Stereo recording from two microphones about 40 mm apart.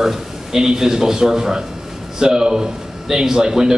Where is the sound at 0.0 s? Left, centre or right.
Centre.